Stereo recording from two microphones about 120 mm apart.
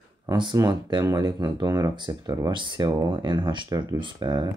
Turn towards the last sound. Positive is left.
turn(degrees=-35)  # may be behind; listen again after turning